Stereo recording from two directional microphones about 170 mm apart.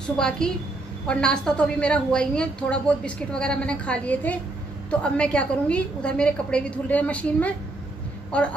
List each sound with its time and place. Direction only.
0.4 s a woman's voice: 5° left (ahead or behind)